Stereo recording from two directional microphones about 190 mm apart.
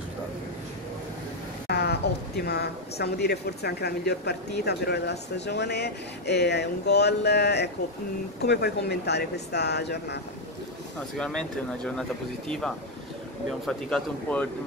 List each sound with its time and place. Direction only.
1.7 s speech: 60° left (ahead or behind)
11.1 s speech: 5° left (ahead or behind)